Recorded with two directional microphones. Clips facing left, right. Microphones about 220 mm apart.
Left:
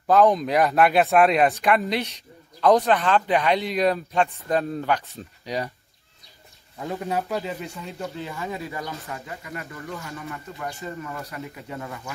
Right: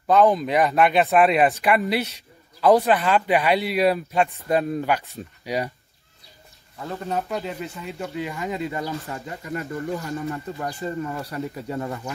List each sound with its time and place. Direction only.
0.0 s speech: centre (ahead or behind)
6.8 s speech: 15° left (ahead or behind)
8.2 s speech: 15° right (ahead or behind)
9.7 s speech: 40° right (ahead or behind)
10.8 s speech: 30° right (ahead or behind)